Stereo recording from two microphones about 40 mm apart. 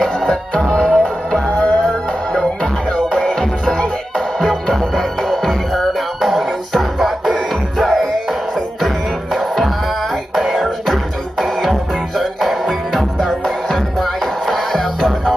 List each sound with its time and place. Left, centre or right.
0.3 s music: centre